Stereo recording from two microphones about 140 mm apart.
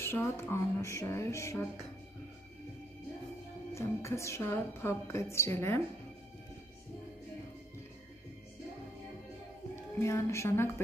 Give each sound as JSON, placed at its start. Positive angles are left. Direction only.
{"t": 0.0, "sound": "a woman's voice", "side_deg": 15}
{"t": 3.7, "sound": "a woman's voice", "side_deg": 20}
{"t": 9.9, "sound": "a woman's voice", "side_deg": 20}